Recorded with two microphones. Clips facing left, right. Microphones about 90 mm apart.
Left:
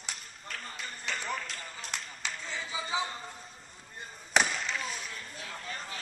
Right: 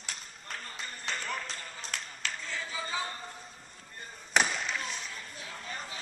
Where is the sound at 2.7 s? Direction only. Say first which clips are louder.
Left 3 dB; 15° left (ahead or behind).